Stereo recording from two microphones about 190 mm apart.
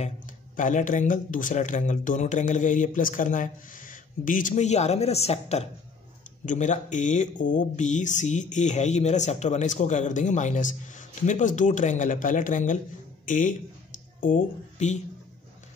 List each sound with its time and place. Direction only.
0.6 s speech: 40° left (ahead or behind)